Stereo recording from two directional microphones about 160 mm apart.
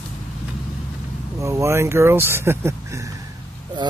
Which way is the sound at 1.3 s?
15° right (ahead or behind).